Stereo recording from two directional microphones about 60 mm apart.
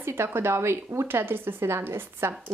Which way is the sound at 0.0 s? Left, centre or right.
Right.